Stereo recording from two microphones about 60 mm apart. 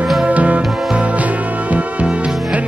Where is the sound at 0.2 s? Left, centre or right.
Right.